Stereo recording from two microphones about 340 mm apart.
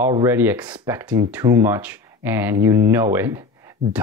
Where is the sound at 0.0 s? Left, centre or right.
Centre.